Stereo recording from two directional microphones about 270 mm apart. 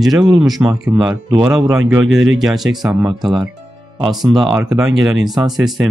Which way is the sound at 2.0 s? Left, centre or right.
Right.